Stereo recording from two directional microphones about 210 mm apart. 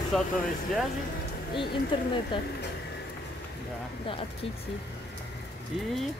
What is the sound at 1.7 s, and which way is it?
Speech, 20° left (ahead or behind).